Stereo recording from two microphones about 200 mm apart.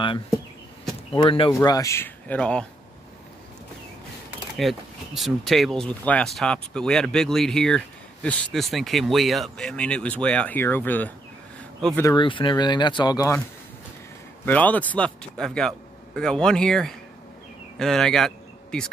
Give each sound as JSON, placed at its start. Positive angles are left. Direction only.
{"t": 1.1, "sound": "speech", "side_deg": 25}
{"t": 1.5, "sound": "speech", "side_deg": 15}
{"t": 4.6, "sound": "speech", "side_deg": 0}
{"t": 14.4, "sound": "speech", "side_deg": 10}